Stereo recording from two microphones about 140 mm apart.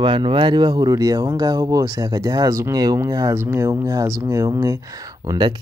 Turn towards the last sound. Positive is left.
turn(degrees=-30)  # may be behind; listen again after turning